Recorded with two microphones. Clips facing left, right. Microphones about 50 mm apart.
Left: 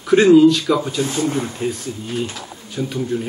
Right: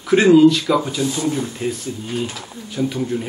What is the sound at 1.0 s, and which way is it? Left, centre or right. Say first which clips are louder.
Speech: even; left.